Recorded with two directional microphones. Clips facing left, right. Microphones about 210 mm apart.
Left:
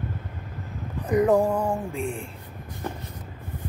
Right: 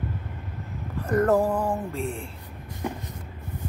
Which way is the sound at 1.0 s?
15° left (ahead or behind).